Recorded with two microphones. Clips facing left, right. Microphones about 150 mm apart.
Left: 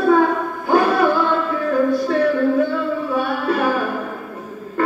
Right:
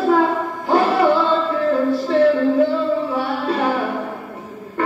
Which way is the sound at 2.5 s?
25° right (ahead or behind).